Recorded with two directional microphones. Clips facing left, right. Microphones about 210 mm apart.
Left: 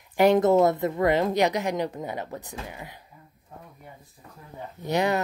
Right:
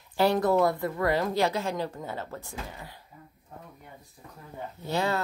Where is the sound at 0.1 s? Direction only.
20° left (ahead or behind).